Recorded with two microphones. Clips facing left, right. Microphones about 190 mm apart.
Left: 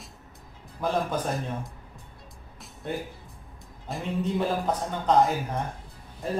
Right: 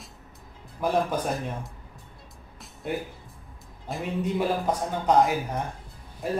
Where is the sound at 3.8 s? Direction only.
5° right (ahead or behind).